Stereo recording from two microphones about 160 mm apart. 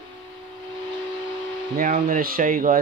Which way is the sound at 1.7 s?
55° right (ahead or behind).